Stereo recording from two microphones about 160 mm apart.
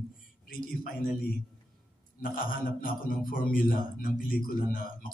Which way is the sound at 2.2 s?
60° left (ahead or behind).